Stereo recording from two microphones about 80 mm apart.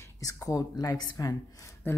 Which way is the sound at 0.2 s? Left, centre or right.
Left.